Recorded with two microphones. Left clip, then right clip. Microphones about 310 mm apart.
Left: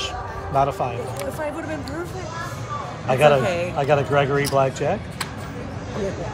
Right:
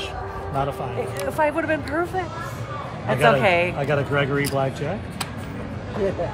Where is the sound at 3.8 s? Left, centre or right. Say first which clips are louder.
Left 4 dB; centre.